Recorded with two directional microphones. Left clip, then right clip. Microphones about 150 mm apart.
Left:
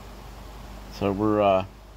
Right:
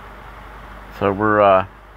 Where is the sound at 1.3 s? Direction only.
55° right (ahead or behind).